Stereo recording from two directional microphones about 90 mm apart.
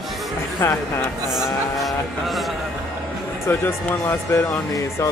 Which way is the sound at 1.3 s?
Centre (ahead or behind).